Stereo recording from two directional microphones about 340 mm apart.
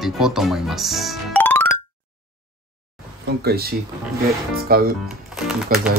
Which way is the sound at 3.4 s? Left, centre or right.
Right.